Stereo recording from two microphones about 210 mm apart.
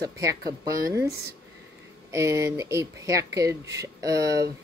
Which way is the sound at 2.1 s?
15° right (ahead or behind).